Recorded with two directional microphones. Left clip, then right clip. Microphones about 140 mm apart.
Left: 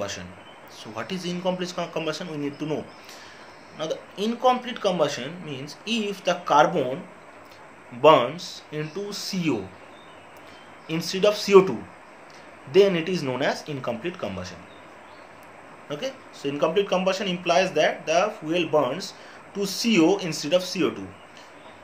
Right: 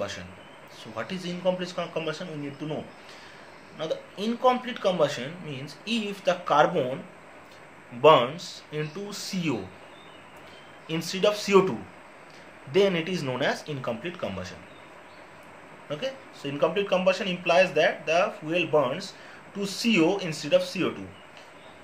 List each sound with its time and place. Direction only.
0.9 s a man's voice: 20° left (ahead or behind)
3.7 s speech: 20° left (ahead or behind)
8.0 s speech: 15° left (ahead or behind)
10.9 s speech: 15° left (ahead or behind)
12.7 s speech: 15° left (ahead or behind)
15.9 s speech: 15° left (ahead or behind)